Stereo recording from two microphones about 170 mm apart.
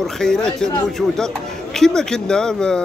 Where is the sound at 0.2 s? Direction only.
5° left (ahead or behind).